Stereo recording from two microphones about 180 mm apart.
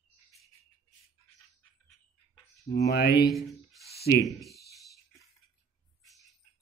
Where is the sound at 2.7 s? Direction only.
65° left (ahead or behind).